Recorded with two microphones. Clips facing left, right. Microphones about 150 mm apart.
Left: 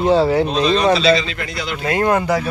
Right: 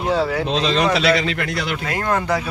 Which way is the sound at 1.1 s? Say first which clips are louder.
Left 1 dB; 65° right (ahead or behind).